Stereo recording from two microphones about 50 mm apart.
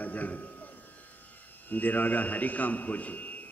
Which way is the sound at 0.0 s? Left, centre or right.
Left.